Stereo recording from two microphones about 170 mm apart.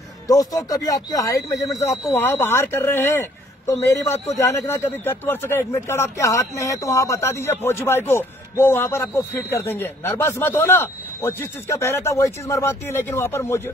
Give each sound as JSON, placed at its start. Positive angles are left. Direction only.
{"t": 0.3, "sound": "a woman's voice", "side_deg": 20}